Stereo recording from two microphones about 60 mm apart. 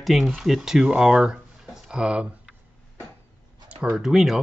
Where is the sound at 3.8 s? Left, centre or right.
Centre.